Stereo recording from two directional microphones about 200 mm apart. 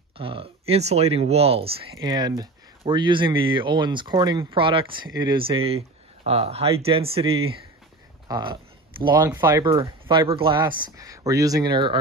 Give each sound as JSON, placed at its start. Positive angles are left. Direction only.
{"t": 0.2, "sound": "speech", "side_deg": -25}